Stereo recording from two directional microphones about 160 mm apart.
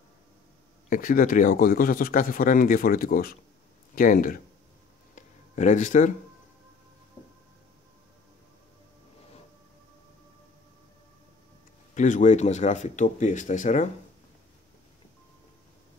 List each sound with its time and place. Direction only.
0.8 s a man's voice: 55° left (ahead or behind)
5.1 s a sound: 50° left (ahead or behind)
11.9 s speech: 50° left (ahead or behind)